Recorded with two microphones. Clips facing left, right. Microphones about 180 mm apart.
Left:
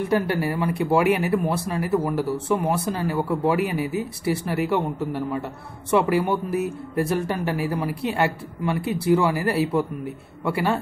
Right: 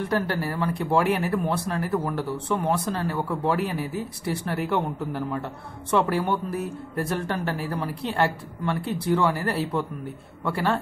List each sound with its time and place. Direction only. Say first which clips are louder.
0.1 s speech: left 5 dB; 10° left (ahead or behind)